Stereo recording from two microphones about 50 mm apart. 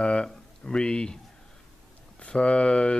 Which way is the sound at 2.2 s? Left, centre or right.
Left.